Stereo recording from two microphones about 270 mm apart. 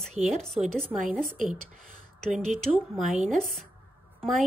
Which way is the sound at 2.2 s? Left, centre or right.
Centre.